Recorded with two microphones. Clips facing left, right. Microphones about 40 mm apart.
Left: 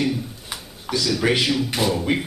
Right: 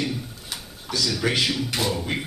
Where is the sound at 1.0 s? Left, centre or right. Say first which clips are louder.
Left 4 dB; centre.